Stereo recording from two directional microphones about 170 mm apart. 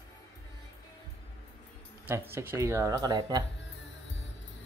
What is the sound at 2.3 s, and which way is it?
Speech, 15° right (ahead or behind).